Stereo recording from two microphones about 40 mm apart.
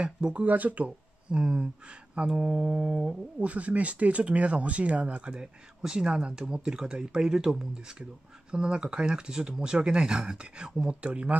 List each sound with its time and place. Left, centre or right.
0.3 s speech: right
0.8 s speech: right
3.3 s speech: right
5.8 s speech: centre; by 11.3 s right